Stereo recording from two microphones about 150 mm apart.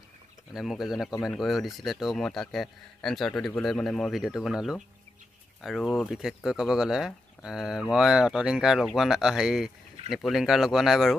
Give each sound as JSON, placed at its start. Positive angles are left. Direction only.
{"t": 0.5, "sound": "speech", "side_deg": 0}